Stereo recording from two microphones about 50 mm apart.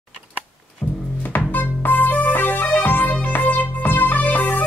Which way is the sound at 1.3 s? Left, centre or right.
Left.